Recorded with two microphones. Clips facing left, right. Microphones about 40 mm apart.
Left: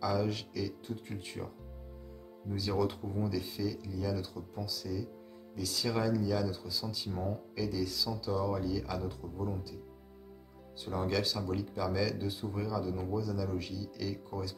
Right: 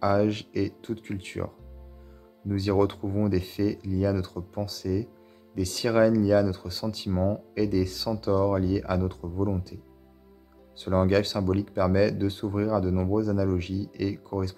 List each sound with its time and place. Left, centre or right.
0.0 s speech: right
10.8 s speech: right